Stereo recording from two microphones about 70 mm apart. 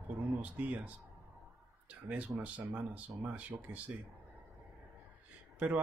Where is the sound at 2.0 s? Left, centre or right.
Right.